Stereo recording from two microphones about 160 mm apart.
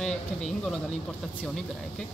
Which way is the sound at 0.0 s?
Centre (ahead or behind).